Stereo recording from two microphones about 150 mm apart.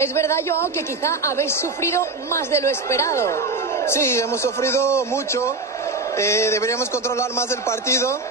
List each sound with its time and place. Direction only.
0.0 s a woman's voice: 20° left (ahead or behind)